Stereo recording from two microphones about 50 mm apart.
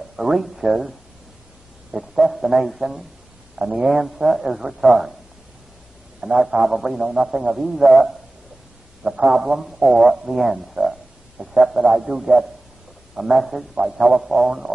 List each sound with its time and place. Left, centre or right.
0.2 s speech: centre
1.9 s a man's voice: centre
6.2 s a man's voice: centre
9.0 s a man's voice: centre